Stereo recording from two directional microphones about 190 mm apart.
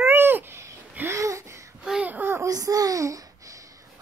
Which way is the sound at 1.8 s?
5° right (ahead or behind).